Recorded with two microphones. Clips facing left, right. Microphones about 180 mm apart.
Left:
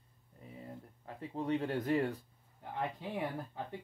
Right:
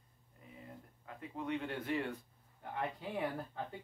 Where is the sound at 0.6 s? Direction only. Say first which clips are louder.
Left 4 dB; 35° left (ahead or behind).